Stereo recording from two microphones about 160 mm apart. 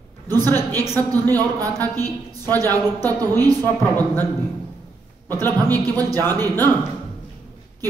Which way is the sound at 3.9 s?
10° left (ahead or behind).